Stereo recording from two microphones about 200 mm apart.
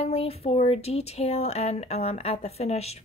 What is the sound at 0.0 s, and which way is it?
A woman's voice, 30° left (ahead or behind).